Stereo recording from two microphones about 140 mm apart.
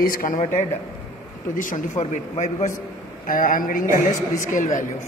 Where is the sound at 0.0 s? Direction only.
90° left.